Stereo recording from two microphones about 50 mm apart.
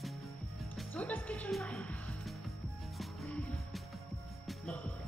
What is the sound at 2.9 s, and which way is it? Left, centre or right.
Music, centre.